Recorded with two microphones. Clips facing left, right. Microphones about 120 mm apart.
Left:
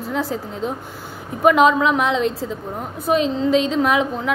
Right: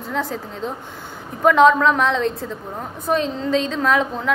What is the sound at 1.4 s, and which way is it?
A woman's voice, 10° left (ahead or behind).